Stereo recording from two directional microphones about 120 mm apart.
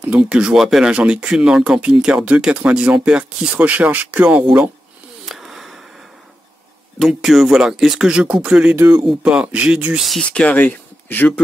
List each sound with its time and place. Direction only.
0.0 s speech: 10° right (ahead or behind)
5.2 s a sound: centre (ahead or behind)
7.0 s speech: centre (ahead or behind)
8.7 s speech: 20° right (ahead or behind)
9.2 s speech: 10° right (ahead or behind); by 11.4 s 15° left (ahead or behind)